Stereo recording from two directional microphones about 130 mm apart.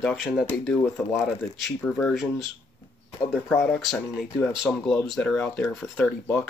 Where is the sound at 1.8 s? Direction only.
10° left (ahead or behind).